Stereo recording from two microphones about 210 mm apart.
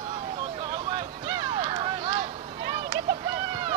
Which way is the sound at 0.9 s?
20° right (ahead or behind).